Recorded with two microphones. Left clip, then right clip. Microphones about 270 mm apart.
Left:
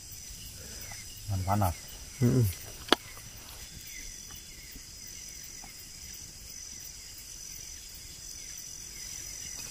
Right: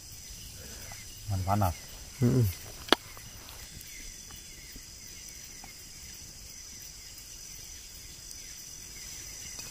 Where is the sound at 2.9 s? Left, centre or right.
Centre.